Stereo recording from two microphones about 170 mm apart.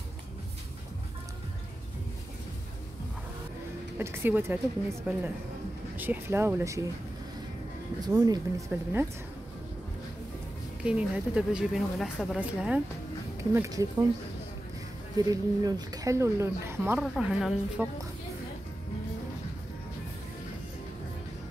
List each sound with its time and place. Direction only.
4.0 s speech: 15° right (ahead or behind)
8.0 s speech: 20° right (ahead or behind)
10.8 s speech: 5° right (ahead or behind)
15.1 s speech: 20° right (ahead or behind)
17.0 s speech: 5° right (ahead or behind)